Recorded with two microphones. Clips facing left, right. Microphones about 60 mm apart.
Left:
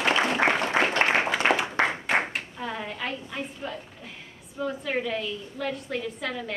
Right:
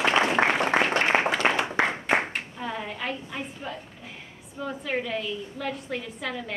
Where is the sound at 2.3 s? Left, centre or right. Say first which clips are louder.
Even; centre.